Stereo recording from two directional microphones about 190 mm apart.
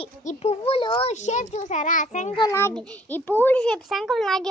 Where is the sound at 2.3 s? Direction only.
15° left (ahead or behind).